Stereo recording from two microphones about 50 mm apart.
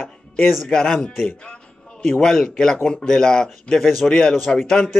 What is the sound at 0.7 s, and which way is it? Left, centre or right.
Speech, centre.